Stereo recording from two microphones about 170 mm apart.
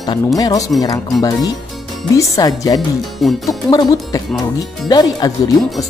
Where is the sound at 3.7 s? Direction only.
20° left (ahead or behind).